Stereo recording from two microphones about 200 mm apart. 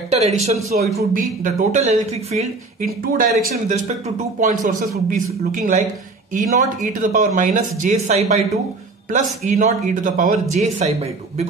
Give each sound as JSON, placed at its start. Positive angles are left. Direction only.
{"t": 0.1, "sound": "speech", "side_deg": -35}
{"t": 2.8, "sound": "speech", "side_deg": -45}